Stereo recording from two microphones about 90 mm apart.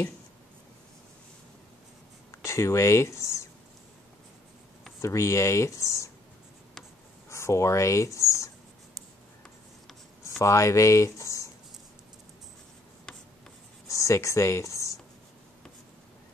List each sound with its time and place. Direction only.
2.4 s speech: 30° left (ahead or behind)
5.0 s speech: 35° left (ahead or behind)
7.2 s speech: 30° left (ahead or behind)
10.4 s speech: 35° left (ahead or behind)
13.8 s speech: 35° left (ahead or behind)